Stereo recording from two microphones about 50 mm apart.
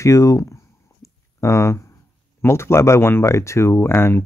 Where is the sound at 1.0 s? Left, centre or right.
Left.